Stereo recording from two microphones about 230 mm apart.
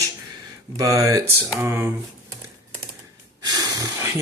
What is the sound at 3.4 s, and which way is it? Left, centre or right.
Breathing, centre.